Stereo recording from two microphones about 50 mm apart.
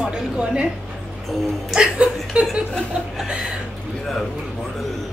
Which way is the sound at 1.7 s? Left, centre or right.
Centre.